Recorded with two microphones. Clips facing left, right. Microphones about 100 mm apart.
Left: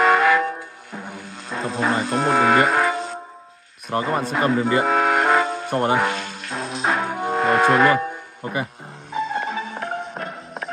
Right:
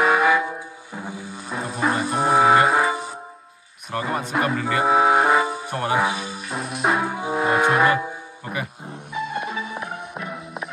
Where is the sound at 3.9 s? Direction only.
60° left (ahead or behind).